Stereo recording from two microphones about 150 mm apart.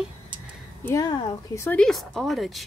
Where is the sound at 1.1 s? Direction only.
30° left (ahead or behind).